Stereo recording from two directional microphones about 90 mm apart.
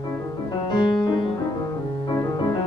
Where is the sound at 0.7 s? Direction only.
60° left (ahead or behind).